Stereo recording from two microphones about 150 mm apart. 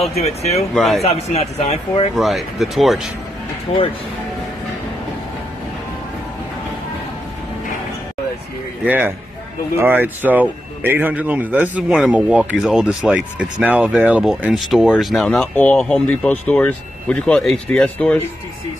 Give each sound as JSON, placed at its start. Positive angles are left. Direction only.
{"t": 0.2, "sound": "speech", "side_deg": 45}
{"t": 0.7, "sound": "speech", "side_deg": 0}
{"t": 1.0, "sound": "speech", "side_deg": 45}
{"t": 2.1, "sound": "speech", "side_deg": 0}
{"t": 3.7, "sound": "speech", "side_deg": 45}
{"t": 8.8, "sound": "speech", "side_deg": -10}